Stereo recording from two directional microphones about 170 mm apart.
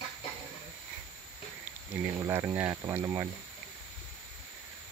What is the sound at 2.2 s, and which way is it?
Speech, 15° right (ahead or behind).